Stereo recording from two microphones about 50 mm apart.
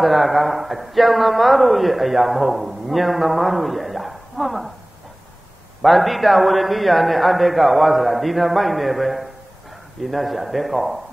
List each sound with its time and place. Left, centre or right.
0.0 s a man's voice: centre
5.8 s a man's voice: centre